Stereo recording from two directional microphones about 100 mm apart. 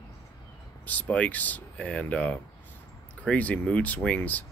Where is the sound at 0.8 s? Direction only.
15° left (ahead or behind).